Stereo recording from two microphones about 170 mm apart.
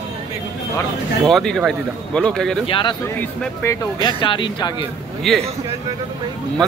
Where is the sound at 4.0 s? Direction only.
30° left (ahead or behind).